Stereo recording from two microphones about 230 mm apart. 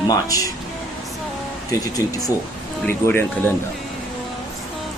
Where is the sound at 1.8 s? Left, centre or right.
Centre.